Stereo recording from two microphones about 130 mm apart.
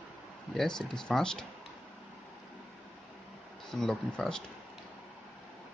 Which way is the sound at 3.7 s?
5° left (ahead or behind).